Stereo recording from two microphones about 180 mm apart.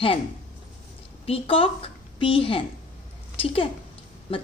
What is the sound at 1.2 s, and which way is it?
A woman's voice, 30° left (ahead or behind).